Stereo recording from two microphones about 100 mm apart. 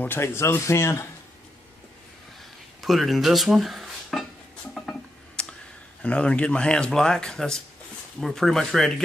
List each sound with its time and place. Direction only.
0.0 s speech: 25° left (ahead or behind)
2.8 s speech: centre (ahead or behind)
4.7 s a sound: 5° left (ahead or behind)
6.0 s speech: 10° left (ahead or behind)